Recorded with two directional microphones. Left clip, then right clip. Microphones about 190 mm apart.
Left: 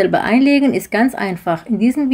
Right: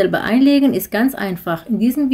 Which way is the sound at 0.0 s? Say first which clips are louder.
Left 1 dB; centre (ahead or behind).